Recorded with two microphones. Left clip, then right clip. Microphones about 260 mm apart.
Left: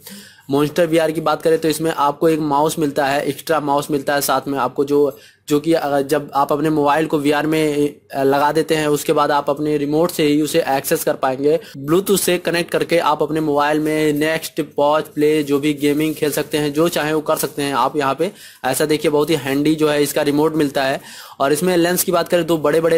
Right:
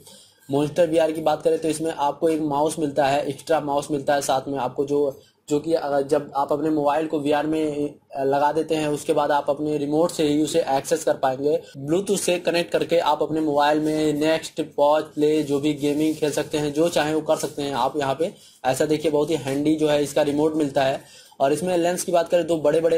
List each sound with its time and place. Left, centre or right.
0.6 s speech: left